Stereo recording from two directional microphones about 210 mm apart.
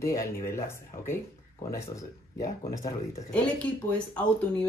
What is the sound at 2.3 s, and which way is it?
Speech, 15° left (ahead or behind).